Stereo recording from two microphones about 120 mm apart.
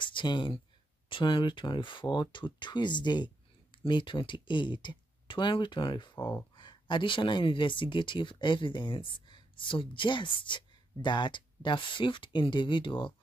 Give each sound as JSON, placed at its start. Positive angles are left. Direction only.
{"t": 0.0, "sound": "speech", "side_deg": 40}